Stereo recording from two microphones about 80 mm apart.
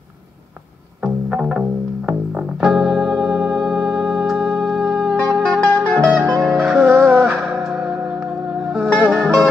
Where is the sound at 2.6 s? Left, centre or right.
Centre.